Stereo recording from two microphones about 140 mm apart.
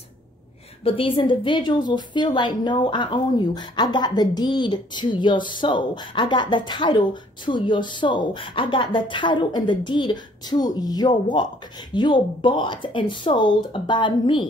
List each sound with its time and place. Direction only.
0.8 s a woman's voice: 40° left (ahead or behind)